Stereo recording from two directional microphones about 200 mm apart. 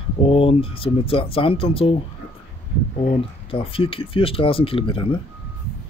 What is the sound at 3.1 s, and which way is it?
Speech, 25° left (ahead or behind).